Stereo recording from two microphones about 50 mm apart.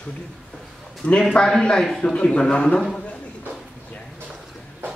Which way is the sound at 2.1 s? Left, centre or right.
Left.